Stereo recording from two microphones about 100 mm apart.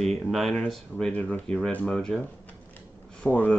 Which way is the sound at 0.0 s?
Centre (ahead or behind).